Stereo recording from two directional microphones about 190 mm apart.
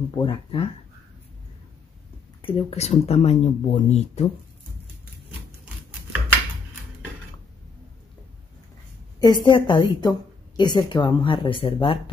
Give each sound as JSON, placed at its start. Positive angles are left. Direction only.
{"t": 0.1, "sound": "a woman's voice", "side_deg": 25}
{"t": 2.4, "sound": "speech", "side_deg": 35}
{"t": 9.2, "sound": "a woman's voice", "side_deg": 25}